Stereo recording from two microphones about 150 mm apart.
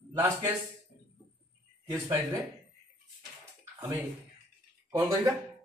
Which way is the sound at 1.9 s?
20° right (ahead or behind).